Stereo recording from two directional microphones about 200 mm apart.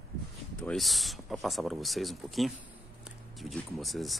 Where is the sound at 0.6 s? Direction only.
Centre (ahead or behind).